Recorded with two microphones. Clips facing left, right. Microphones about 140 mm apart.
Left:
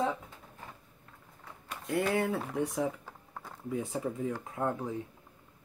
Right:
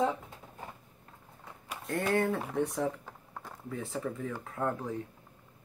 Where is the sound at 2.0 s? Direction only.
5° left (ahead or behind).